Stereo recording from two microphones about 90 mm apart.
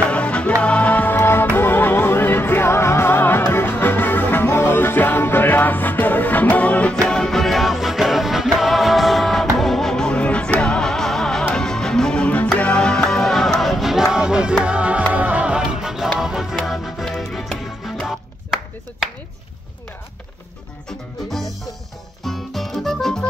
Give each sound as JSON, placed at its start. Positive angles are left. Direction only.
{"t": 0.1, "sound": "music", "side_deg": 15}
{"t": 22.2, "sound": "music", "side_deg": 0}